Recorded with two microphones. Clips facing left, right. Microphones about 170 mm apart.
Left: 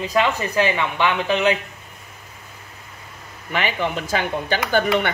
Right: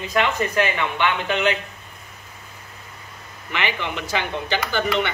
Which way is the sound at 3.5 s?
45° left (ahead or behind).